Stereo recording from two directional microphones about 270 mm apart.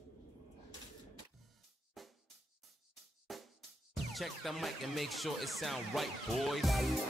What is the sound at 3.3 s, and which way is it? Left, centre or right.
Music, centre.